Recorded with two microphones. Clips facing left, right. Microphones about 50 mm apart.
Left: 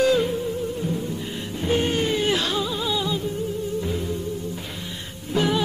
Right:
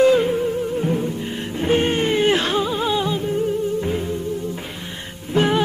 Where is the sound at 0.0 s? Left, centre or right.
Right.